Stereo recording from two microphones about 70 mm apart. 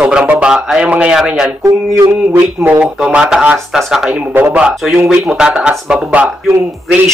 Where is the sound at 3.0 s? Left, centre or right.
Centre.